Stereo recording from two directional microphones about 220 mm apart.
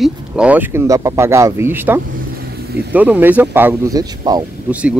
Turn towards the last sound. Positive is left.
turn(degrees=-5)  # may be behind; listen again after turning